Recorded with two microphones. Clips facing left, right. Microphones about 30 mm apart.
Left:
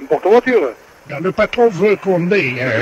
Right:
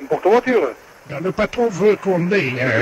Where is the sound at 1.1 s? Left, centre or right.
Left.